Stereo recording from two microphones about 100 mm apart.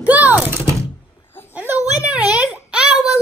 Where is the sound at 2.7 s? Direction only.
10° right (ahead or behind).